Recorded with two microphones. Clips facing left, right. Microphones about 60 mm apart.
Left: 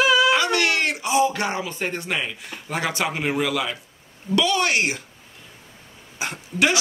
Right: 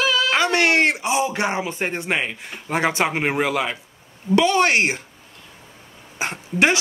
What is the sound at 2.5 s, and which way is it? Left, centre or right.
Speech, right.